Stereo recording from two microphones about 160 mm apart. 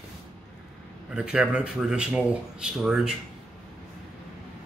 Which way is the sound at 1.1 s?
5° right (ahead or behind).